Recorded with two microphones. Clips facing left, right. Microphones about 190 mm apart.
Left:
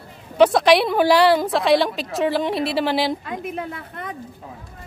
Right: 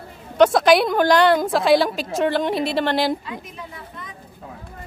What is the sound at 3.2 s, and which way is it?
Speech, 60° left (ahead or behind).